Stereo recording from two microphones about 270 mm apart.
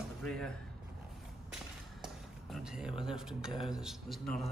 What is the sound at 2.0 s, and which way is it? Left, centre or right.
Speech, centre.